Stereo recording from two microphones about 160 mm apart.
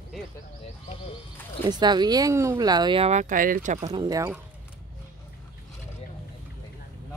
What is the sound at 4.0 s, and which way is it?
Speech, 25° right (ahead or behind).